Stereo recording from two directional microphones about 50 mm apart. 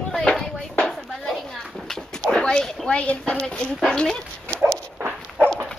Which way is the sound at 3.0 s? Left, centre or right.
Left.